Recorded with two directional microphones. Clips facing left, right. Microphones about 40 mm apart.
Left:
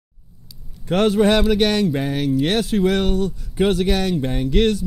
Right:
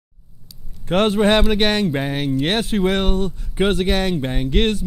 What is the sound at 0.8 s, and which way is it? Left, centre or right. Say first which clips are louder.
Speech: even; right.